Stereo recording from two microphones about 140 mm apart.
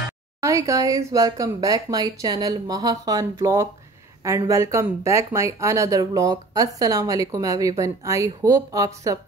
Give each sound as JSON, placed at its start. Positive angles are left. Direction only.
{"t": 0.4, "sound": "speech", "side_deg": -20}